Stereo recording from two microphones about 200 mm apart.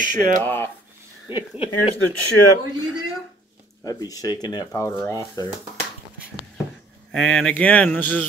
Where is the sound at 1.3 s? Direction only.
25° left (ahead or behind).